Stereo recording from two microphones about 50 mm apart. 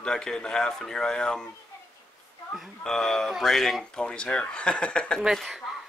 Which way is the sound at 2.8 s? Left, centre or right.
Centre.